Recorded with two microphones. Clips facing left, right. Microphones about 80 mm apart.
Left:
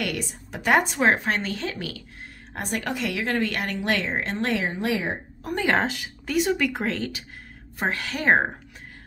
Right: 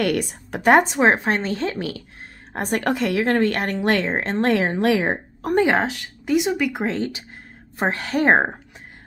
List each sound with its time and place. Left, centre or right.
0.0 s a woman's voice: right
0.8 s a woman's voice: right
4.6 s speech: right
5.8 s a woman's voice: centre
6.2 s speech: centre
6.9 s a woman's voice: right
7.9 s a woman's voice: right